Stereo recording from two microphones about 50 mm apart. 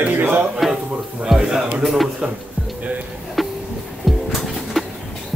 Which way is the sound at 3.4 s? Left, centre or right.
Centre.